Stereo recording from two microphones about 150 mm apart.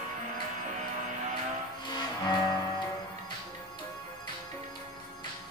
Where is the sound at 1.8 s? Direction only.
30° left (ahead or behind).